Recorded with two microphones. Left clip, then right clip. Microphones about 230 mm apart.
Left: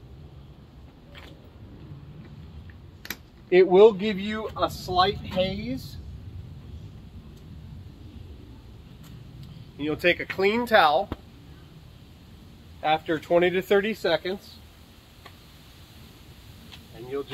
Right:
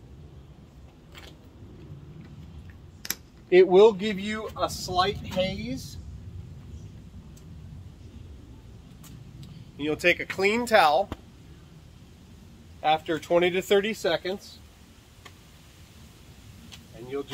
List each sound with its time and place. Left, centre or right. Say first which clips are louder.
3.0 s a sound: right 2 dB; right
3.6 s speech: left 3 dB; centre
9.8 s speech: even; centre
12.8 s speech: even; centre
17.1 s speech: left 1 dB; centre